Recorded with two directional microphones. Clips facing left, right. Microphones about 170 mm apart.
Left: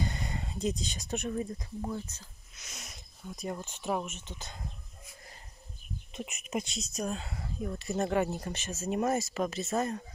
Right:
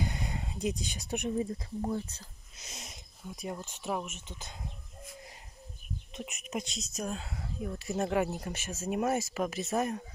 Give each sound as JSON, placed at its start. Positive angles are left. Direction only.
{"t": 0.0, "sound": "speech", "side_deg": -10}
{"t": 1.9, "sound": "speech", "side_deg": -30}
{"t": 3.3, "sound": "speech", "side_deg": -5}
{"t": 6.1, "sound": "speech", "side_deg": 0}